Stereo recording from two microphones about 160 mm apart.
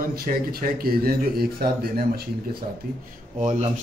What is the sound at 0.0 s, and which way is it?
Speech, 70° right (ahead or behind).